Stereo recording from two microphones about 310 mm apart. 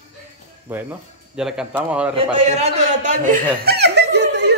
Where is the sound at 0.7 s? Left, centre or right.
Centre.